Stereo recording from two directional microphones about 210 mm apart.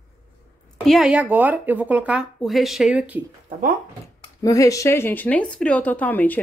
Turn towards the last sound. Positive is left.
turn(degrees=10)  # may be behind; listen again after turning